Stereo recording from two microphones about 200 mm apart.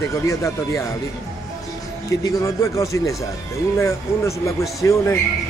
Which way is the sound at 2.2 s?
15° left (ahead or behind).